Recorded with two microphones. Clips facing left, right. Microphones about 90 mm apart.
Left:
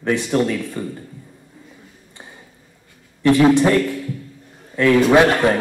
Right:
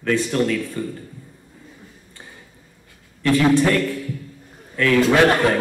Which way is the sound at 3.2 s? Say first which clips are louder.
Left 3 dB; 20° left (ahead or behind).